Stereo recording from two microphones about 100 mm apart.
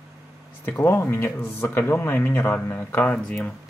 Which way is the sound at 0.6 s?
20° left (ahead or behind).